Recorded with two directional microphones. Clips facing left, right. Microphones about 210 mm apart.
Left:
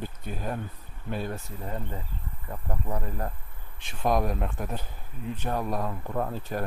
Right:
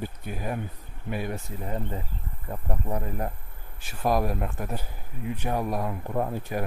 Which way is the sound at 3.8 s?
5° right (ahead or behind).